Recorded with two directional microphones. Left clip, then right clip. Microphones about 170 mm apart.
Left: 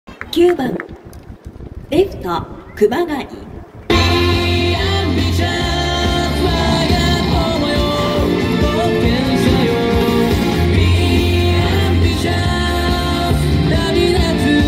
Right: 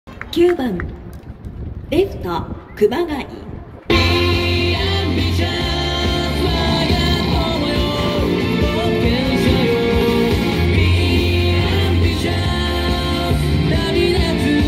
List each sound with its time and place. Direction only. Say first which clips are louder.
0.3 s a child's voice: left 2 dB; 25° left (ahead or behind)
1.9 s a woman's voice: left 2 dB; 40° left (ahead or behind)
3.8 s music: left 1 dB; 40° left (ahead or behind)